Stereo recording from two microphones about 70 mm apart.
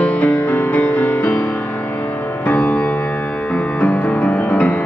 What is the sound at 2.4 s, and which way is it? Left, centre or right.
Music, left.